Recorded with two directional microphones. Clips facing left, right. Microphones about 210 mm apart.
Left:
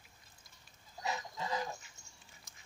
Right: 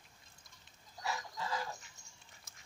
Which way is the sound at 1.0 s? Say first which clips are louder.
Left 1 dB; 20° left (ahead or behind).